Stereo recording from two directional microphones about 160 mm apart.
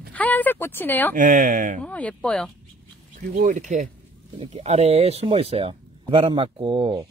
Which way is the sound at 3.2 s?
50° right (ahead or behind).